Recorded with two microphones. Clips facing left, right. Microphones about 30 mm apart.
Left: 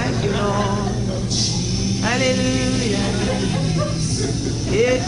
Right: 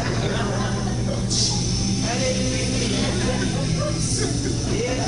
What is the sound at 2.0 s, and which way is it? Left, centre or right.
Music, left.